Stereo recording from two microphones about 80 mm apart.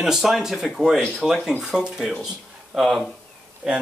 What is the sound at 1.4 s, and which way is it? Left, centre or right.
A man's voice, centre.